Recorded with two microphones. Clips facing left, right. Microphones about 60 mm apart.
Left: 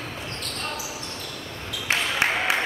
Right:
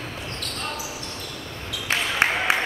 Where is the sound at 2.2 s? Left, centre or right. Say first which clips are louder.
Right 3 dB; right.